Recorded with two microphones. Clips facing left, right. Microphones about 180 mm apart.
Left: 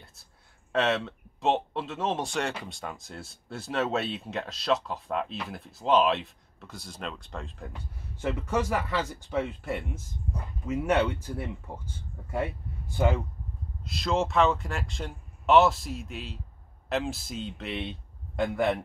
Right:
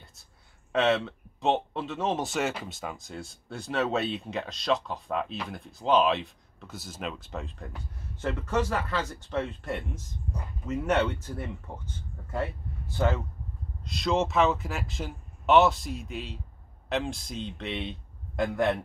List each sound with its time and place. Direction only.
0.0 s speech: centre (ahead or behind)
13.8 s speech: centre (ahead or behind)